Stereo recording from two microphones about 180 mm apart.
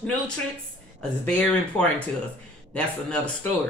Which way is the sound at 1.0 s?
5° left (ahead or behind).